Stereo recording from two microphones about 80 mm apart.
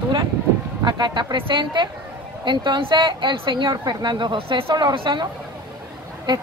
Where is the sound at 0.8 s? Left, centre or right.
Right.